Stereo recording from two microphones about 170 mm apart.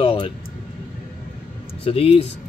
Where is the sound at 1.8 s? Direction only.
35° left (ahead or behind).